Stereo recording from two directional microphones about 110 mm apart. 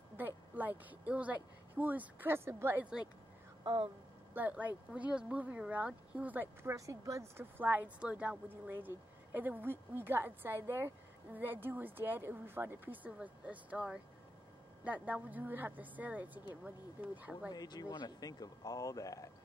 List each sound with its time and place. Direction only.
0.2 s speech: 15° right (ahead or behind)
3.6 s speech: 45° right (ahead or behind)
4.3 s a woman's voice: 15° right (ahead or behind)
17.5 s speech: 35° left (ahead or behind)